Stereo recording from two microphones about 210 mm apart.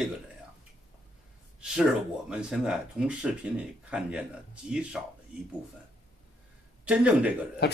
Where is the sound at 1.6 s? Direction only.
Centre (ahead or behind).